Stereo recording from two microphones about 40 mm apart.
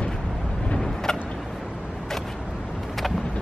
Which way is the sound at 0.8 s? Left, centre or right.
Centre.